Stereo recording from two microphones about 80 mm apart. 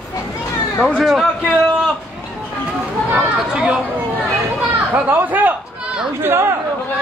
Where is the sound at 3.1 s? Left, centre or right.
Centre.